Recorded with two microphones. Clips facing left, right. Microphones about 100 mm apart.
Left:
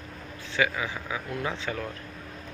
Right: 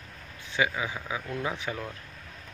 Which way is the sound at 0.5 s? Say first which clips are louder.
Left 1 dB; 20° right (ahead or behind).